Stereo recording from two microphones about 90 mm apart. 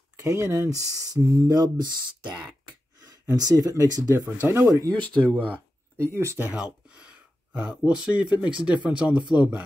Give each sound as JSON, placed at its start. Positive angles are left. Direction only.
{"t": 0.2, "sound": "speech", "side_deg": -30}
{"t": 1.8, "sound": "speech", "side_deg": -50}
{"t": 4.4, "sound": "speech", "side_deg": -25}
{"t": 4.6, "sound": "speech", "side_deg": -40}
{"t": 5.9, "sound": "speech", "side_deg": -30}
{"t": 6.5, "sound": "speech", "side_deg": -10}